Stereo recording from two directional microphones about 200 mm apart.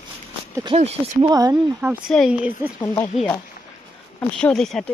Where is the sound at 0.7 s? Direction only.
30° right (ahead or behind).